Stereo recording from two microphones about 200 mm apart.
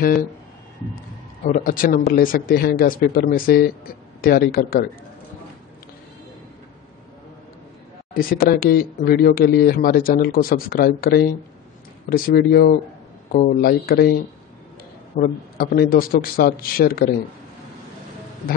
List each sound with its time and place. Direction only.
1.4 s speech: 40° left (ahead or behind)
8.1 s speech: 45° left (ahead or behind)
15.1 s speech: 45° left (ahead or behind)